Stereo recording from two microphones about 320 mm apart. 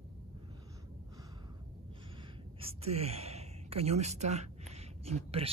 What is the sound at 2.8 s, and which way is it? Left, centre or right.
Gasp, centre.